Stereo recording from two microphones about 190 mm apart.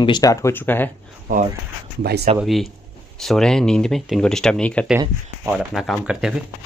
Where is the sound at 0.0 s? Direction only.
20° left (ahead or behind).